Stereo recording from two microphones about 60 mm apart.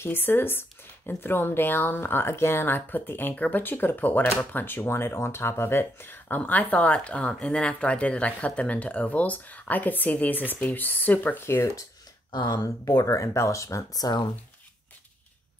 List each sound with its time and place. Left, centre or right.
0.0 s speech: left
11.4 s speech: left
12.6 s speech: left